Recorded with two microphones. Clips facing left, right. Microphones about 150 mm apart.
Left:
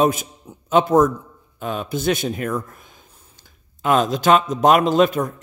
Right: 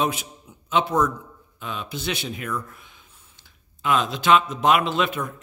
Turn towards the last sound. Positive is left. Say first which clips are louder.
# left 8 dB
turn(degrees=40)  # may be behind; listen again after turning